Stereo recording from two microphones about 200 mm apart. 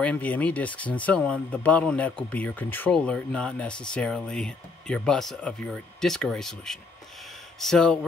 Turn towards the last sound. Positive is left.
turn(degrees=0)  # may be behind; listen again after turning